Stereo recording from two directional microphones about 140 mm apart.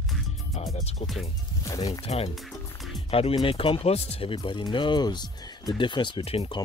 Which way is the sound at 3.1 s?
45° left (ahead or behind).